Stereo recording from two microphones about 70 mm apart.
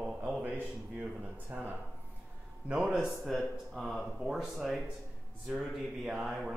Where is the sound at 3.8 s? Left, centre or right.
Centre.